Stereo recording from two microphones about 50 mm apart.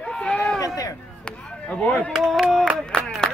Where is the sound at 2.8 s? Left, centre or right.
Centre.